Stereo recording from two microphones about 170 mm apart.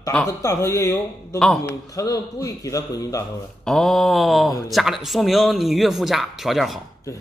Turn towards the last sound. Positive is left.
turn(degrees=0)  # may be behind; listen again after turning